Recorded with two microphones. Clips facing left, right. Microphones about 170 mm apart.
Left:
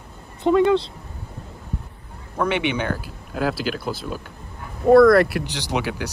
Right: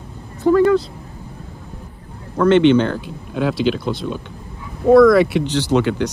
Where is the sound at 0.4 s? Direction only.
20° left (ahead or behind).